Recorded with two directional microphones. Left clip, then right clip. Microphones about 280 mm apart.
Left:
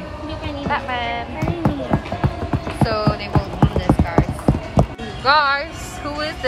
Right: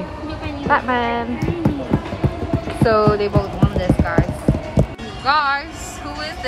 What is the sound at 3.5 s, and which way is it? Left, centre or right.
Music, centre.